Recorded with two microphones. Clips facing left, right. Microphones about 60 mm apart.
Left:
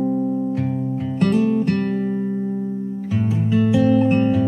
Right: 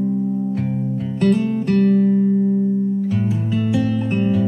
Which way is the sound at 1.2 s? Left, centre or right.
Centre.